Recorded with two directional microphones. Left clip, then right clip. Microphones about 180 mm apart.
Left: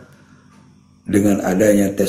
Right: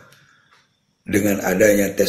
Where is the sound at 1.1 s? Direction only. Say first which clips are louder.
Left 2 dB; 35° right (ahead or behind).